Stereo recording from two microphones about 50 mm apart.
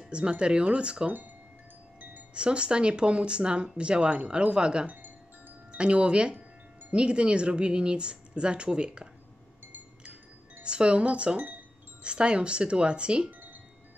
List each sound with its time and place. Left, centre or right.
0.1 s speech: right
2.3 s speech: right
10.6 s speech: right
13.3 s wind chime: right